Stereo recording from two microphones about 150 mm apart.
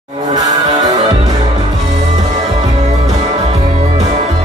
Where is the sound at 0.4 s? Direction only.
25° right (ahead or behind).